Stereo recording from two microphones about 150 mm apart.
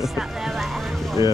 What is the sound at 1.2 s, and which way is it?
Speech, 30° left (ahead or behind).